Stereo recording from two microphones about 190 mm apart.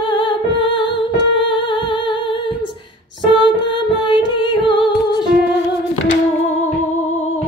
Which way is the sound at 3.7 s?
25° left (ahead or behind).